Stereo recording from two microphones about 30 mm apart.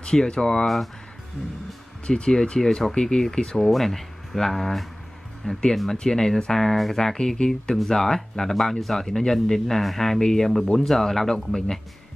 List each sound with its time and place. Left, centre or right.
0.0 s speech: left
2.0 s speech: left
3.7 s speech: centre
6.6 s speech: centre
7.2 s speech: left
7.7 s speech: centre